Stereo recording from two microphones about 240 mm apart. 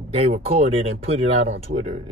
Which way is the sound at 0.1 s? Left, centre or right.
Right.